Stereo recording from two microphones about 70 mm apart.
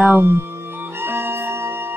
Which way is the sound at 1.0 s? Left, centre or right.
Right.